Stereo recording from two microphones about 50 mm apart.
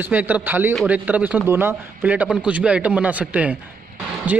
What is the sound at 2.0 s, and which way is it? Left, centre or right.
A man's voice, right.